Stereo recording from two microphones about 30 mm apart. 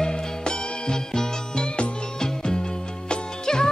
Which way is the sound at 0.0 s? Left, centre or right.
Left.